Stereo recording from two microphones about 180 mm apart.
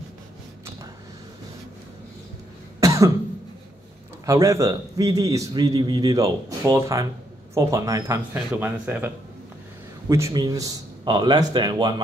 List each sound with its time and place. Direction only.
2.8 s cough: 20° right (ahead or behind)
4.3 s a man's voice: 15° right (ahead or behind)